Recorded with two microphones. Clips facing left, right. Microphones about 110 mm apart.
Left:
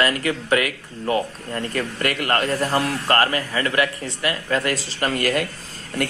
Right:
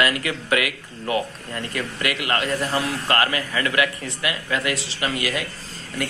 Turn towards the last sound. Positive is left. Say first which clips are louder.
# left 3 dB
turn(degrees=55)  # may be behind; listen again after turning